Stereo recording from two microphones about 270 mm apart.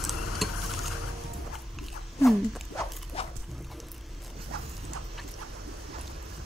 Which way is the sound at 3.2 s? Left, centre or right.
Left.